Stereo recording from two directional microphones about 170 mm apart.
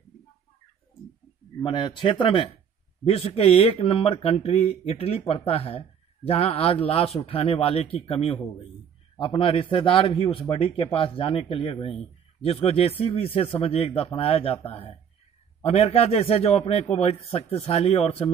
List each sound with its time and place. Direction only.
1.6 s speech: 30° left (ahead or behind)